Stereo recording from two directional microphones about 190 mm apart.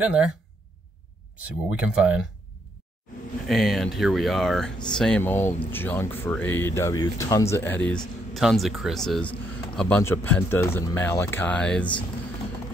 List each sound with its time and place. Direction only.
0.0 s speech: 5° right (ahead or behind)
1.4 s speech: 5° right (ahead or behind)
3.4 s speech: centre (ahead or behind)